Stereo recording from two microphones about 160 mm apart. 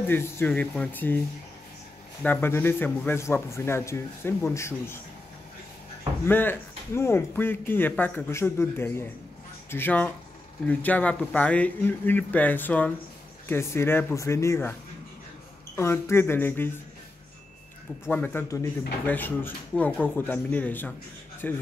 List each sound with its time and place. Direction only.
0.0 s speech: 15° left (ahead or behind)
2.2 s speech: 15° left (ahead or behind)
6.2 s speech: 15° left (ahead or behind)
18.1 s speech: 10° left (ahead or behind)